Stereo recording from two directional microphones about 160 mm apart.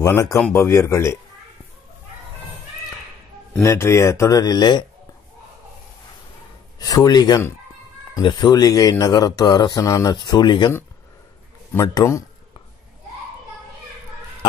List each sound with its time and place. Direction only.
0.0 s speech: 20° left (ahead or behind)
3.6 s speech: 15° left (ahead or behind)
6.8 s speech: 25° left (ahead or behind)
11.7 s speech: 20° left (ahead or behind)